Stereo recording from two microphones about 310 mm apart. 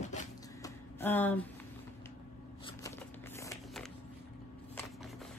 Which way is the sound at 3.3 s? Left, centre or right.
Centre.